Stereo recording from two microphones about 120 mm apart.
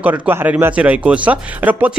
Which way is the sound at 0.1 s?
20° right (ahead or behind).